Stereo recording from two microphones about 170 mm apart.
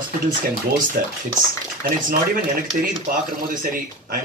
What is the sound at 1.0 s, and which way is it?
Speech, 60° right (ahead or behind).